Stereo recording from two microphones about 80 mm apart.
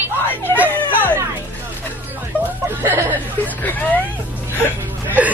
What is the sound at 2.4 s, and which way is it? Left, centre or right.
Speech, right.